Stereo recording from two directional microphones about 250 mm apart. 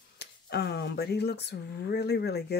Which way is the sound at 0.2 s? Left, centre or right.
Left.